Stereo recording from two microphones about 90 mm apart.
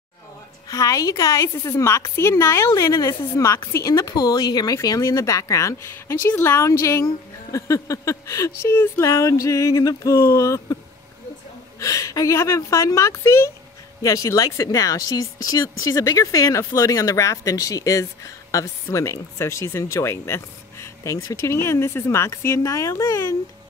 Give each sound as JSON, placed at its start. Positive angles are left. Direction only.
{"t": 0.7, "sound": "speech", "side_deg": 40}
{"t": 4.1, "sound": "speech", "side_deg": 50}
{"t": 9.0, "sound": "speech", "side_deg": 35}
{"t": 11.8, "sound": "speech", "side_deg": 40}